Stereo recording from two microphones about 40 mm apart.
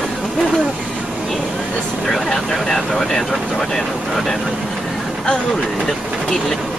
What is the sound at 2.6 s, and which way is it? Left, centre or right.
Speech, centre.